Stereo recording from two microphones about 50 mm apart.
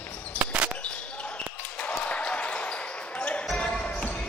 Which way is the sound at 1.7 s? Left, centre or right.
Left.